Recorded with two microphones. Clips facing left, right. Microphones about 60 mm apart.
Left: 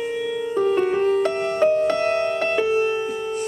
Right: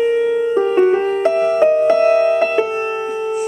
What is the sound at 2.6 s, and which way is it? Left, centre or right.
Music, right.